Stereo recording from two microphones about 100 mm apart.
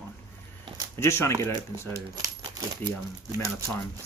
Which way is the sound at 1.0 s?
25° left (ahead or behind).